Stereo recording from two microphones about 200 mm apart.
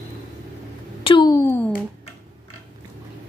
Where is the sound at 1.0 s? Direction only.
25° left (ahead or behind).